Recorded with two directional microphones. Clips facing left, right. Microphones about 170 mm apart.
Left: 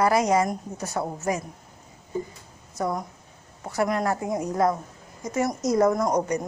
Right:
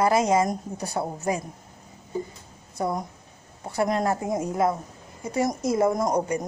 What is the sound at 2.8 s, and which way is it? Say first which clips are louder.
A woman's voice: even; 20° right (ahead or behind).